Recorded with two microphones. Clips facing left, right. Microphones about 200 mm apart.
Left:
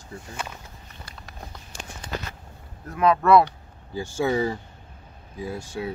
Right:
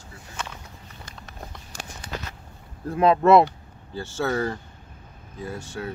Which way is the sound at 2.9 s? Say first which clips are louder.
Right 2 dB; 30° right (ahead or behind).